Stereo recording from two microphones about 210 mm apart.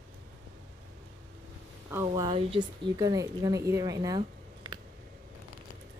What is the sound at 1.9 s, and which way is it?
Speech, 10° right (ahead or behind).